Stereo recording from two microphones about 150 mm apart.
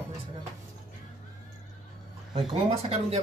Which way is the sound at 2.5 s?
45° right (ahead or behind).